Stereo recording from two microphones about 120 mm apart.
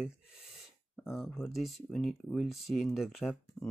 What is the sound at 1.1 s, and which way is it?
Speech, centre (ahead or behind).